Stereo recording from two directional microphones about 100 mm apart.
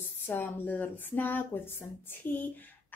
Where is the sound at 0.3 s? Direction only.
20° left (ahead or behind).